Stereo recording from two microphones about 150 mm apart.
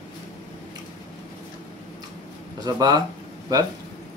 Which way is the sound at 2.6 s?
25° right (ahead or behind).